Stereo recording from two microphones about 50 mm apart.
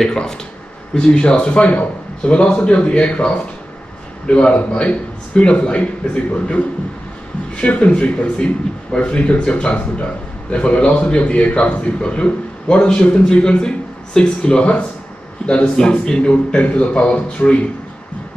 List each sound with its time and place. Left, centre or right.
0.0 s a man's voice: centre